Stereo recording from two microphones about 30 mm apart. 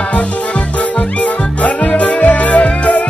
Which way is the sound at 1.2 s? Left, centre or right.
Left.